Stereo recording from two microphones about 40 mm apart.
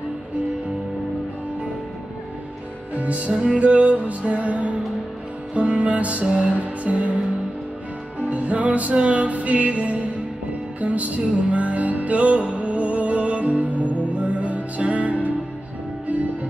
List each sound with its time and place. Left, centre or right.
3.0 s music: right
8.2 s music: right